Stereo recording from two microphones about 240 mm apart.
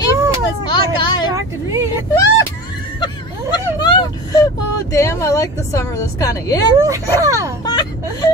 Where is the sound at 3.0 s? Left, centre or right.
Centre.